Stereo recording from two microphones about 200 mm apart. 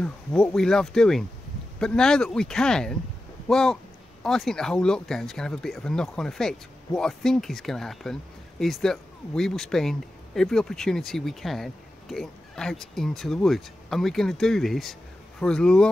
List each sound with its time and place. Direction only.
0.0 s speech: 5° left (ahead or behind)